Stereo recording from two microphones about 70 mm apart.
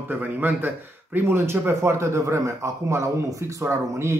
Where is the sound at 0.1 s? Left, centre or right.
Right.